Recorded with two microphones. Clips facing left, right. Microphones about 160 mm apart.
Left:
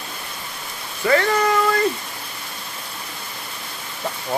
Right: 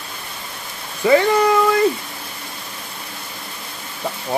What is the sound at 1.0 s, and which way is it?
Speech, 15° right (ahead or behind).